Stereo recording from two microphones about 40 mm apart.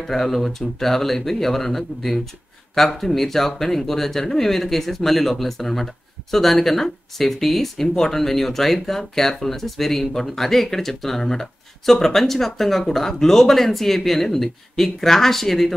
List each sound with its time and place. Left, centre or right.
0.0 s speech: centre